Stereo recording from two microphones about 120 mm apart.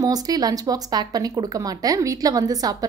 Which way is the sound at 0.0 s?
30° right (ahead or behind).